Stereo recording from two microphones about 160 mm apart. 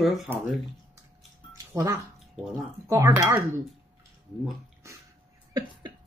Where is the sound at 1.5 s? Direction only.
20° right (ahead or behind).